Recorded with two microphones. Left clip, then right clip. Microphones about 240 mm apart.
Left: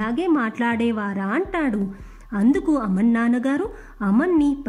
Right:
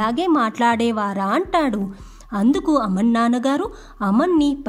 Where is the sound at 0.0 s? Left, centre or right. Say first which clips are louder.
Right 3 dB; right.